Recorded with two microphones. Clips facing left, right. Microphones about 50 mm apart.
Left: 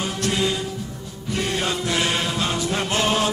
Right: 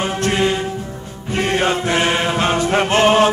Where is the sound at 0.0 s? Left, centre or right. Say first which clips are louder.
Right 6 dB; right.